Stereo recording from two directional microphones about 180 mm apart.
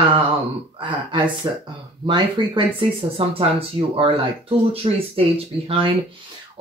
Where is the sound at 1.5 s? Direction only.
25° right (ahead or behind).